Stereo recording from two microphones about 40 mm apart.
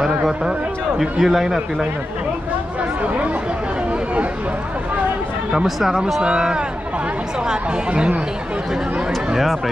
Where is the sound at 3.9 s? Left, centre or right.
Right.